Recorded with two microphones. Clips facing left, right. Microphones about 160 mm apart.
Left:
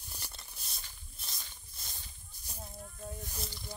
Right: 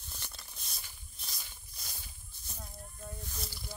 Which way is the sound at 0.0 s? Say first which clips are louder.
Even; 10° left (ahead or behind).